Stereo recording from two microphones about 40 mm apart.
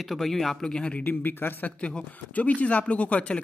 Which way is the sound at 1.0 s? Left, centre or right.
Left.